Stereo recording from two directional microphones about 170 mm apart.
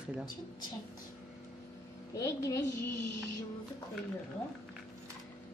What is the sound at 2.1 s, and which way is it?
Speech, 20° left (ahead or behind).